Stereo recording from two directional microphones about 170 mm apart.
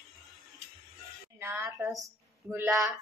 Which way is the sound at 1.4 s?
15° right (ahead or behind).